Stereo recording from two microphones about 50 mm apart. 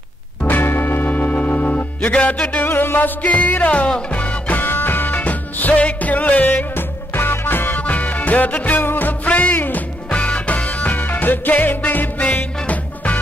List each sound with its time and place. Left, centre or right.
0.4 s music: left
1.1 s music: left
2.7 s music: left
3.2 s music: left
7.2 s music: left
7.8 s music: left